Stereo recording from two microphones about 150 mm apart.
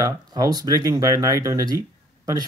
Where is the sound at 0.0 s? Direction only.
25° right (ahead or behind).